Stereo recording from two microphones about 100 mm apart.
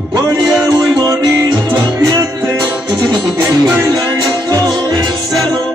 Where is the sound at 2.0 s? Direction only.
30° right (ahead or behind).